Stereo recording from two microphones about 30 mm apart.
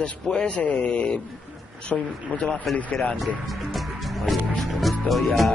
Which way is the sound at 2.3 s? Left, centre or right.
Left.